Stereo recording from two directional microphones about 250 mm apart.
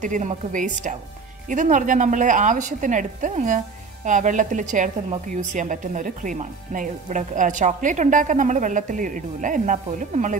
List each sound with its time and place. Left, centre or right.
0.0 s a woman's voice: right